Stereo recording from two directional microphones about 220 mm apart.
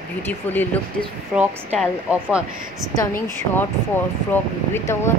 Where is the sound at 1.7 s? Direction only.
Centre (ahead or behind).